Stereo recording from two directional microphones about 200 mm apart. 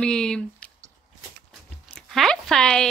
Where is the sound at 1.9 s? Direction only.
Centre (ahead or behind).